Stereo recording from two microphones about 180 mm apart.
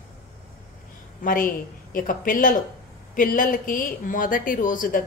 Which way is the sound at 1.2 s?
50° left (ahead or behind).